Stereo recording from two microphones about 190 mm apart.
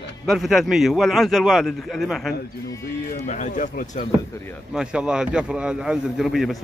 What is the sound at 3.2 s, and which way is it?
Speech, 40° left (ahead or behind).